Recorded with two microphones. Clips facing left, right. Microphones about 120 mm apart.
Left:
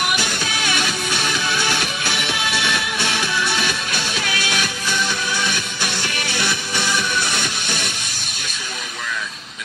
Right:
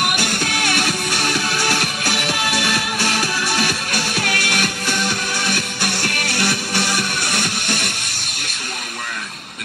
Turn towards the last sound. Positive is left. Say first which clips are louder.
# right 2 dB
turn(degrees=-45)  # may be behind; listen again after turning